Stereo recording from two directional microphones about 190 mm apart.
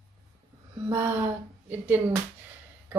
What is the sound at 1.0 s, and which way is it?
Speech, 10° right (ahead or behind).